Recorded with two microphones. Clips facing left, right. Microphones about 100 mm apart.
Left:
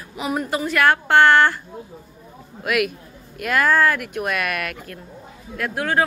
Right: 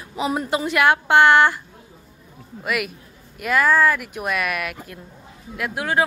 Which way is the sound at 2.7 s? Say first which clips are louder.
Left 4 dB; centre (ahead or behind).